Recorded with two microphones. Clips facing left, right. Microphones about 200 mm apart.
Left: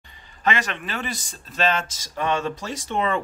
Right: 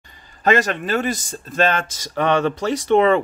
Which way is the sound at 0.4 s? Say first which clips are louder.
Right 7 dB; 40° right (ahead or behind).